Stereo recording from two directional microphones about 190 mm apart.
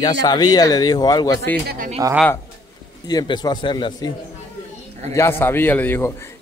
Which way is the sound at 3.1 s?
20° left (ahead or behind).